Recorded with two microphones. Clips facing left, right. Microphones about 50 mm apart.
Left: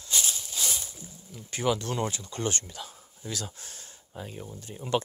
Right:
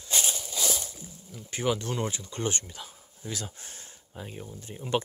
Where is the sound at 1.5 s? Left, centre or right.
Centre.